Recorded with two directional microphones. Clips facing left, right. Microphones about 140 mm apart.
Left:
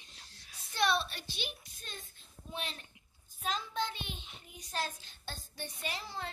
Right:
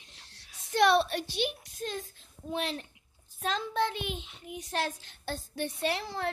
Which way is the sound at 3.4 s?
85° right.